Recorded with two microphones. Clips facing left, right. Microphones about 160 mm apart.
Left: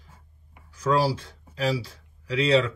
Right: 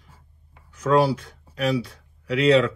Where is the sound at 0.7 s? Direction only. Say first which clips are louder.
Right 4 dB; 30° left (ahead or behind).